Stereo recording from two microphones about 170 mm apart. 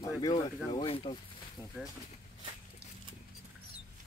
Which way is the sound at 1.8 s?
15° right (ahead or behind).